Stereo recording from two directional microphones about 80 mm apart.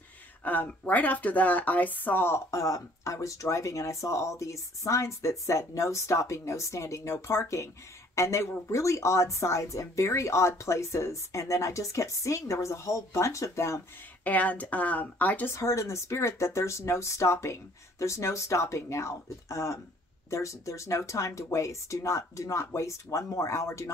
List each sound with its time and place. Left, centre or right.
0.4 s a woman's voice: left
14.2 s speech: centre
15.5 s a woman's voice: left